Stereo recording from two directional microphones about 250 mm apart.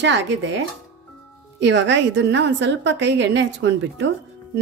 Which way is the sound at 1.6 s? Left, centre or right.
Right.